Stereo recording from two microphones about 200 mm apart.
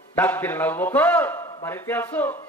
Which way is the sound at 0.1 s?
10° left (ahead or behind).